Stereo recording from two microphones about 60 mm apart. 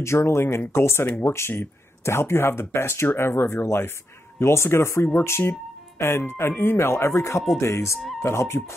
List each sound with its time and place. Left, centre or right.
0.0 s speech: left